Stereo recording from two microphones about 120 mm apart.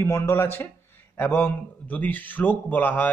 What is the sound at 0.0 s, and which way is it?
A man's voice, 20° left (ahead or behind).